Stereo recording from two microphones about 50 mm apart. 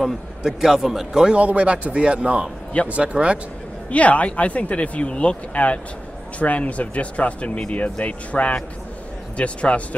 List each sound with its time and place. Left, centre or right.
0.0 s a man's voice: centre
1.4 s a man's voice: right
3.9 s speech: left